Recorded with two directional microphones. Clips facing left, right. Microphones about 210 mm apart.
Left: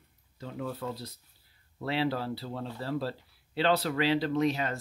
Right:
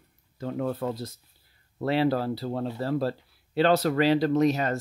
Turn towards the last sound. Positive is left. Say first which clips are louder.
# right 5 dB
turn(degrees=-45)  # may be behind; listen again after turning